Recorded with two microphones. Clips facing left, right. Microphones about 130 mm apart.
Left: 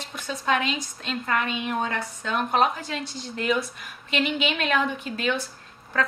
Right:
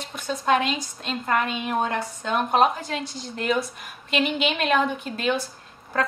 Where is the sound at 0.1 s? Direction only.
Centre (ahead or behind).